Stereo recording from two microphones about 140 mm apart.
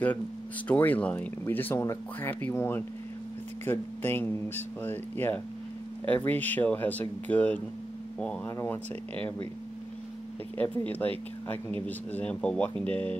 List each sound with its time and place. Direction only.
0.7 s speech: 10° left (ahead or behind)
10.6 s speech: 10° left (ahead or behind)